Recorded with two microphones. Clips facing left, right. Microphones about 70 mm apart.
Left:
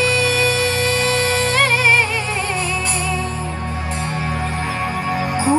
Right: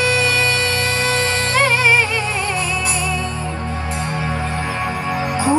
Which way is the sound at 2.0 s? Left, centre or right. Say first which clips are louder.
Right 1 dB; left.